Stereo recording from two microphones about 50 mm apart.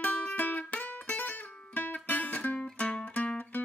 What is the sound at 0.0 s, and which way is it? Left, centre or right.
Music, left.